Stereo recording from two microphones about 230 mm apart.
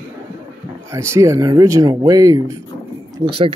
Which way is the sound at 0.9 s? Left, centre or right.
Centre.